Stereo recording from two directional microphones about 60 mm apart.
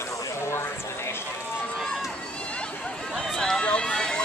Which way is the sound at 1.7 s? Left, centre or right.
Centre.